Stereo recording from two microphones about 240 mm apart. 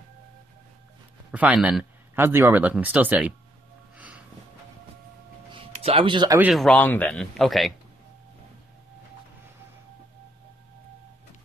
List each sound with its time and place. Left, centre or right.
1.3 s speech: centre
3.9 s music: centre
5.5 s speech: right
6.5 s speech: centre